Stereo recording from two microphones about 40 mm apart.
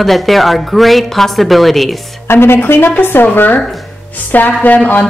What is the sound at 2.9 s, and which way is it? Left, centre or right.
A woman's voice, left.